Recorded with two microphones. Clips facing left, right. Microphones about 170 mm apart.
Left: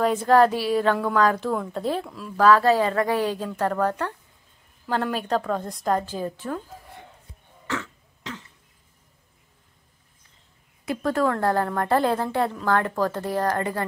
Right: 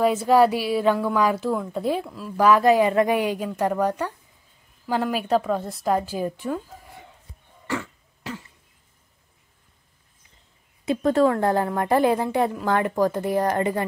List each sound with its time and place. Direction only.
0.0 s a woman's voice: 10° right (ahead or behind)
7.6 s cough: 10° right (ahead or behind)
10.9 s a woman's voice: 20° right (ahead or behind)